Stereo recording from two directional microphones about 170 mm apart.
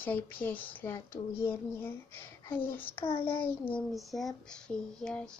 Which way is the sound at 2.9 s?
30° left (ahead or behind).